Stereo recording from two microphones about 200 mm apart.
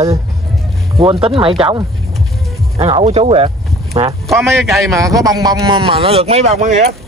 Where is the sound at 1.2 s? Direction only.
25° right (ahead or behind).